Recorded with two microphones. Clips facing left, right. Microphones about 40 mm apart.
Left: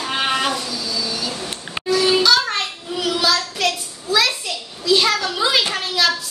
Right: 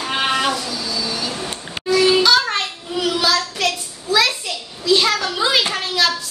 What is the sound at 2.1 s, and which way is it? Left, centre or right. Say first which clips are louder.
Child singing: right 1 dB; centre.